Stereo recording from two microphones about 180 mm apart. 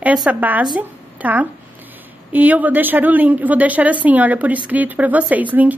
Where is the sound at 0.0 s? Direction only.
5° right (ahead or behind).